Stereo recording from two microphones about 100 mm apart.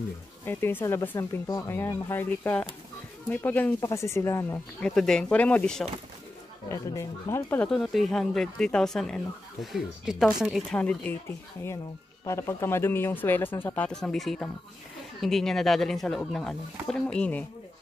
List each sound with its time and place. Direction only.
0.5 s speech: 20° left (ahead or behind)
3.8 s speech: 30° left (ahead or behind)
4.7 s speech: 5° left (ahead or behind)
6.7 s speech: 30° left (ahead or behind)
7.6 s speech: centre (ahead or behind)
10.7 s speech: 10° left (ahead or behind)
11.2 s speech: 25° left (ahead or behind)